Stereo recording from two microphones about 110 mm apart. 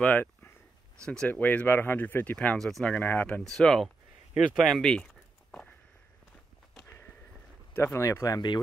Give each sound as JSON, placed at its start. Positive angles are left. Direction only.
{"t": 0.0, "sound": "speech", "side_deg": 15}
{"t": 3.4, "sound": "speech", "side_deg": 5}
{"t": 4.6, "sound": "a sound", "side_deg": 0}
{"t": 7.7, "sound": "speech", "side_deg": 25}